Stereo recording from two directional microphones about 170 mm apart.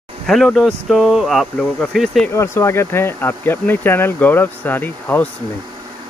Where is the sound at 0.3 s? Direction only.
Centre (ahead or behind).